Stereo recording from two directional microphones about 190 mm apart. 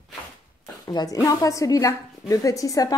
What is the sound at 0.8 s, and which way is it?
A woman's voice, 20° left (ahead or behind).